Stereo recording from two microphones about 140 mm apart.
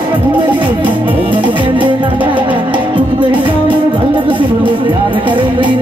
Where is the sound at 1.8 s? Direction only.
35° right (ahead or behind).